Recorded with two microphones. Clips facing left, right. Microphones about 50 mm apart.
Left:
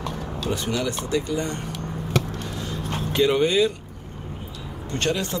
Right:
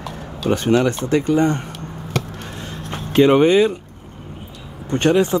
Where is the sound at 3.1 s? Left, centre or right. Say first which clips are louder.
Right 7 dB; right.